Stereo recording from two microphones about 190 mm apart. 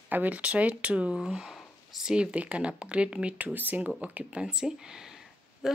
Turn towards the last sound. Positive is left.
turn(degrees=-5)  # may be behind; listen again after turning